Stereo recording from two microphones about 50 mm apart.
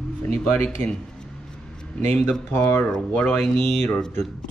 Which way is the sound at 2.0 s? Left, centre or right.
Left.